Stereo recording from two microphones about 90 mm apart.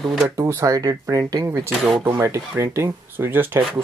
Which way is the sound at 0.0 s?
Centre (ahead or behind).